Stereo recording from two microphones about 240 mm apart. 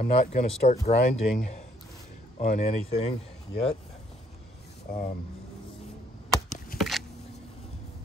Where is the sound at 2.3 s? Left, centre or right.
Left.